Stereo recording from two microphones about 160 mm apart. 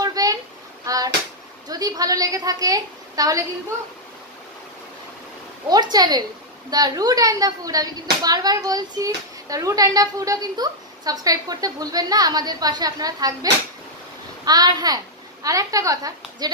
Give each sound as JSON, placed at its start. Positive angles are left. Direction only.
{"t": 0.0, "sound": "a sound", "side_deg": -25}
{"t": 1.7, "sound": "a woman's voice", "side_deg": -20}
{"t": 5.7, "sound": "a woman's voice", "side_deg": -25}